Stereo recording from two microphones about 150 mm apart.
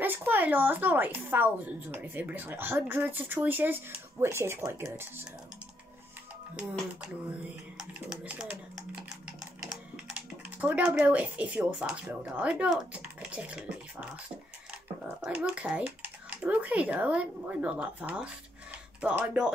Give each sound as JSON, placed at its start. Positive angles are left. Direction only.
{"t": 0.0, "sound": "a woman's voice", "side_deg": -15}
{"t": 7.0, "sound": "a woman's voice", "side_deg": -5}
{"t": 10.6, "sound": "a woman's voice", "side_deg": -10}
{"t": 15.2, "sound": "speech", "side_deg": -10}